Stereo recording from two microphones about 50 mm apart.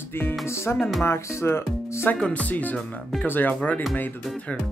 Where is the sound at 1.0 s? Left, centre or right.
Left.